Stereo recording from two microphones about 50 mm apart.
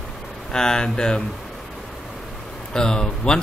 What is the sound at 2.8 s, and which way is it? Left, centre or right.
Speech, centre.